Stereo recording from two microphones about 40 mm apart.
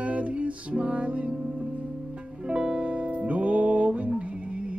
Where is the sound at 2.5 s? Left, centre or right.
Right.